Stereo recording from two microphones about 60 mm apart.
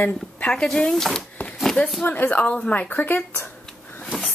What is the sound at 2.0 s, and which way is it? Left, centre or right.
Speech, left.